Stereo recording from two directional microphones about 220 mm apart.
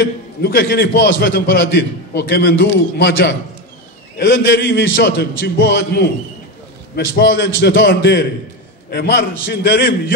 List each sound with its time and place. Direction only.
0.0 s a man's voice: 45° left (ahead or behind)
7.2 s a man's voice: 50° left (ahead or behind)